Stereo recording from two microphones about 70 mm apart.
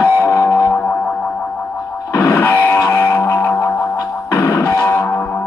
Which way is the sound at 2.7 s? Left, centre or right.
Left.